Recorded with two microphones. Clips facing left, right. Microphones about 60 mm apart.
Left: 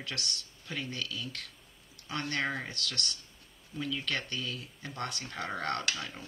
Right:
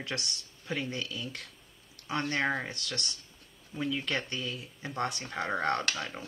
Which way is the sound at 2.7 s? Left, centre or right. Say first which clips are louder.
Even; right.